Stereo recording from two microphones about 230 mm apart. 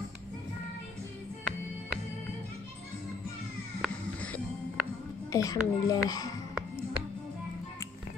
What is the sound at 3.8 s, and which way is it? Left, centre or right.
Music, centre.